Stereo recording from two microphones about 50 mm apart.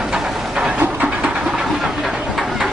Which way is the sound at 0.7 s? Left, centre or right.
Right.